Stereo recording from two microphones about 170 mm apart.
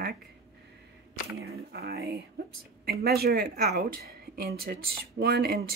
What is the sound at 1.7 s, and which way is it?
A woman's voice, 70° right (ahead or behind).